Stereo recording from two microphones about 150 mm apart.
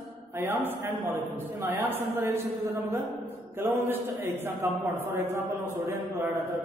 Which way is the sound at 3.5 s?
15° right (ahead or behind).